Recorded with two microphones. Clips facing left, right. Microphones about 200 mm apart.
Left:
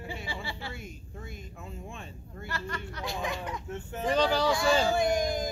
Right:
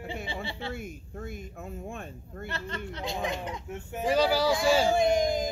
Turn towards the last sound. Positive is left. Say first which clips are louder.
# right 3 dB
turn(degrees=-20)  # may be behind; listen again after turning